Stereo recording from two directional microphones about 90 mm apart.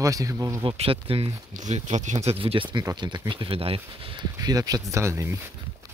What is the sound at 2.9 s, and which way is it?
Speech, 55° right (ahead or behind).